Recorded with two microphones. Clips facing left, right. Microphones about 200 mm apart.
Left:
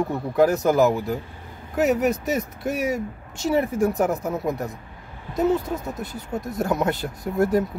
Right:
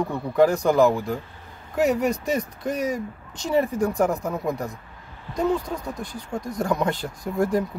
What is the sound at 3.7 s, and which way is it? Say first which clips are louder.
Speech: left 2 dB; 20° left (ahead or behind).